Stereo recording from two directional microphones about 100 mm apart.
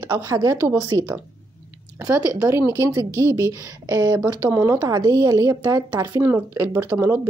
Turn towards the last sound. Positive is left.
turn(degrees=-25)  # may be behind; listen again after turning